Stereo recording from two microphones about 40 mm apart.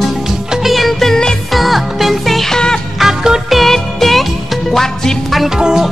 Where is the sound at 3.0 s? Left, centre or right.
Centre.